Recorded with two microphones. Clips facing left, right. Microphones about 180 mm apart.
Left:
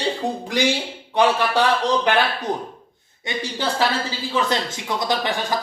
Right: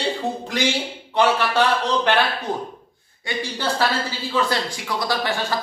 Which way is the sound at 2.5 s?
15° left (ahead or behind).